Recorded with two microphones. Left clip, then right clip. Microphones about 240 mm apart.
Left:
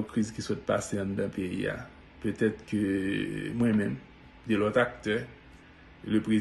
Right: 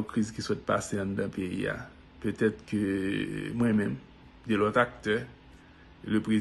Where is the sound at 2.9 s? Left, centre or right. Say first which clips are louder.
Left 1 dB; right.